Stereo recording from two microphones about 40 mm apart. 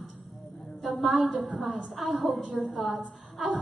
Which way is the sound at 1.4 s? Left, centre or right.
Centre.